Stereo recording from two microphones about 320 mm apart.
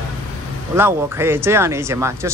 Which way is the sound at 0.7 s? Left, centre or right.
Centre.